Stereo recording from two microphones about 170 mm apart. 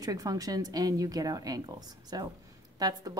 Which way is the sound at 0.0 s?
20° right (ahead or behind).